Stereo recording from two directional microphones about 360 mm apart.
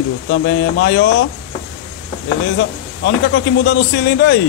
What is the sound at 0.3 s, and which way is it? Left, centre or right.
Speech, left.